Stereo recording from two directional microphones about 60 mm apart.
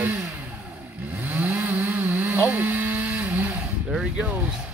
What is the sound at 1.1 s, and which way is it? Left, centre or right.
Vehicle, right.